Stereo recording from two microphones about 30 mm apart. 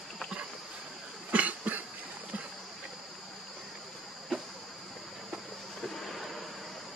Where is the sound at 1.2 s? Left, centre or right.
Right.